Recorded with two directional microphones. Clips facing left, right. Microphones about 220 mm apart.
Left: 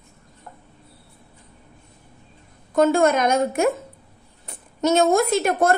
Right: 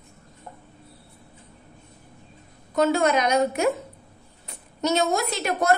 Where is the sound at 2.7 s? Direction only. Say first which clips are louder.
Left 3 dB; 50° left (ahead or behind).